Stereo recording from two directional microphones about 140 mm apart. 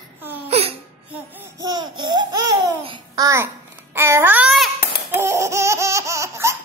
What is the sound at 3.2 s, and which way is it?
Babbling, 20° right (ahead or behind).